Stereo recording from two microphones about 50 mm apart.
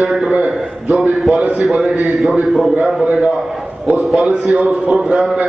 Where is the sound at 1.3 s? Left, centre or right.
Centre.